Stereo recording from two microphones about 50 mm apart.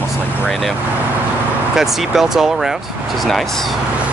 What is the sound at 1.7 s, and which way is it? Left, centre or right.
Speech, centre.